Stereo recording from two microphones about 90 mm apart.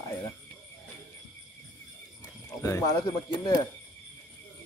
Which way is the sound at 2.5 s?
35° left (ahead or behind).